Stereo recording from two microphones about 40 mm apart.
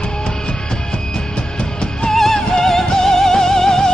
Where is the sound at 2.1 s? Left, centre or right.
Centre.